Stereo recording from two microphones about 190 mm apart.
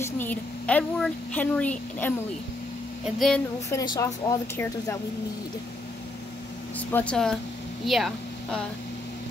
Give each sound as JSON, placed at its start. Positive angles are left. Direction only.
{"t": 0.0, "sound": "a woman's voice", "side_deg": 10}
{"t": 3.2, "sound": "speech", "side_deg": 0}
{"t": 3.7, "sound": "a woman's voice", "side_deg": 20}
{"t": 6.9, "sound": "speech", "side_deg": 5}